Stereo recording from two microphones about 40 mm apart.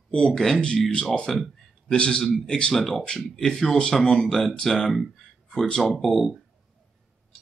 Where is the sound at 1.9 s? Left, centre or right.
Left.